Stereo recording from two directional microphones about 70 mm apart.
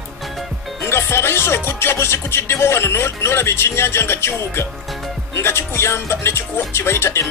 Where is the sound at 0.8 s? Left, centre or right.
Left.